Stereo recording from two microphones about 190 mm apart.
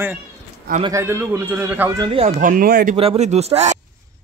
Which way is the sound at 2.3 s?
45° right (ahead or behind).